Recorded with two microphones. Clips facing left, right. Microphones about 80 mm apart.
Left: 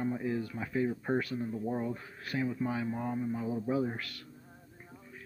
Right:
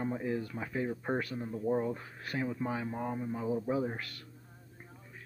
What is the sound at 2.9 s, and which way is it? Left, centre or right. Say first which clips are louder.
A man's voice: left 2 dB; centre.